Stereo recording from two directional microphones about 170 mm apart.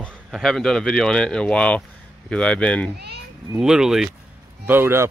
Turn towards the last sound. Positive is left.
turn(degrees=-15)  # may be behind; listen again after turning